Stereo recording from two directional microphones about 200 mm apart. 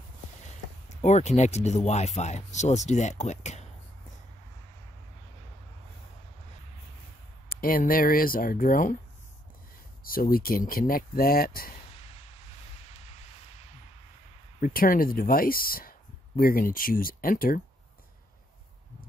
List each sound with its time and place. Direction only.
0.8 s speech: 35° left (ahead or behind)
7.4 s speech: 45° left (ahead or behind)
10.0 s speech: 45° left (ahead or behind)
13.0 s a sound: 30° left (ahead or behind)
14.6 s speech: 45° left (ahead or behind)